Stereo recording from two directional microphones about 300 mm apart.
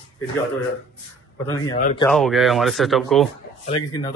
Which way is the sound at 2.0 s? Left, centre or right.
Centre.